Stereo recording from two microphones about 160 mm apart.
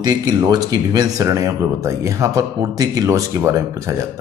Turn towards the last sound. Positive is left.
turn(degrees=-20)  # may be behind; listen again after turning